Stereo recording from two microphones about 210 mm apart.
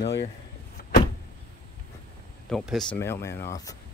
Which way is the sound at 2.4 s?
Centre (ahead or behind).